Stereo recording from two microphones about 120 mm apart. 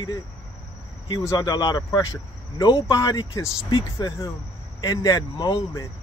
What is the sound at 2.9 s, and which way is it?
Speech, 30° left (ahead or behind).